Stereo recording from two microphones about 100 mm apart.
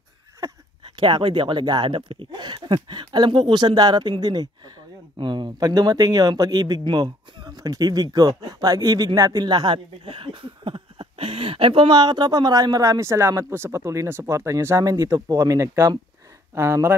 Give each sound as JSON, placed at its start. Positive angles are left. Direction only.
{"t": 0.8, "sound": "speech", "side_deg": -50}